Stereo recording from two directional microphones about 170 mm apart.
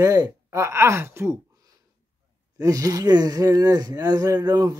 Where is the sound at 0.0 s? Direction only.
20° right (ahead or behind).